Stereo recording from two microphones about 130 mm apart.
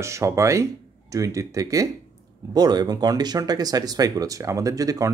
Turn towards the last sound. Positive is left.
turn(degrees=-25)  # may be behind; listen again after turning